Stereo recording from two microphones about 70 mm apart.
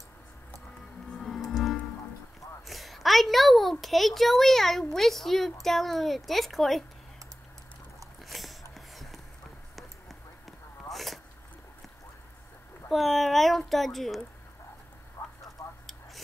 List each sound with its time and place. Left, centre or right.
1.1 s music: centre
2.6 s a child's voice: centre
8.3 s a sound: centre
12.9 s a child's voice: centre
15.2 s vehicle: left
15.6 s a sound: left